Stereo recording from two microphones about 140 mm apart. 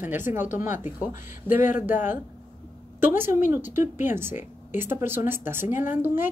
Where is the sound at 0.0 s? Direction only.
15° right (ahead or behind).